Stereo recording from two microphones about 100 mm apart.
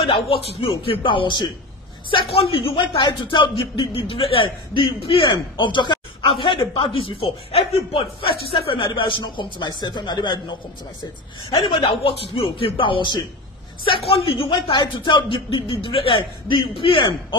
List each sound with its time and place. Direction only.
0.0 s speech: 75° left (ahead or behind)
1.0 s a man's voice: 50° left (ahead or behind)
2.0 s a man's voice: 70° left (ahead or behind); by 10.4 s 45° left (ahead or behind)
11.7 s a man's voice: 60° left (ahead or behind)
13.8 s a man's voice: 70° left (ahead or behind)